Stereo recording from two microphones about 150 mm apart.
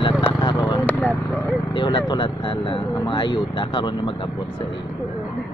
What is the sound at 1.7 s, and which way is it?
Speech, 30° left (ahead or behind).